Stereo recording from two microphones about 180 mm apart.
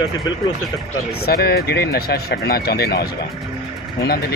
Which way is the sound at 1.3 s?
60° left (ahead or behind).